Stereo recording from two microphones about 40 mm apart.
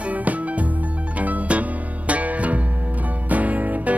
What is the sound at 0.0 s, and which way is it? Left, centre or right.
Music, right.